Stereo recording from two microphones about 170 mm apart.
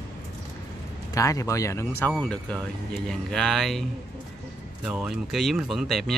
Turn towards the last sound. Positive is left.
turn(degrees=0)  # may be behind; listen again after turning